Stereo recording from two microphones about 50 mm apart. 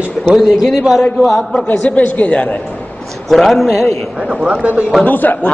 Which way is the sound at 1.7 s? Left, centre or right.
Left.